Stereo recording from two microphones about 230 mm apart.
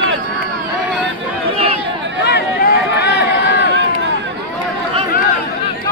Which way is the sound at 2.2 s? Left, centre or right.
Left.